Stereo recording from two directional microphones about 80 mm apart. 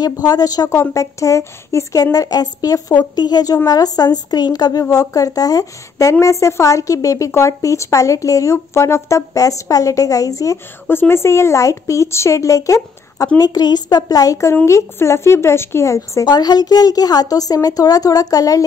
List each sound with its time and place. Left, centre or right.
0.0 s a woman's voice: left
2.1 s a woman's voice: left
10.9 s a woman's voice: left
13.4 s a woman's voice: left
14.5 s a woman's voice: left
16.3 s a woman's voice: left